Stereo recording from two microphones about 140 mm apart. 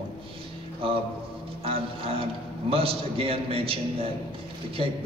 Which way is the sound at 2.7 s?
45° right (ahead or behind).